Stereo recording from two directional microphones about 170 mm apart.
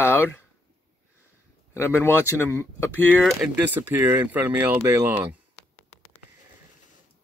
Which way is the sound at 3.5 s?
10° right (ahead or behind).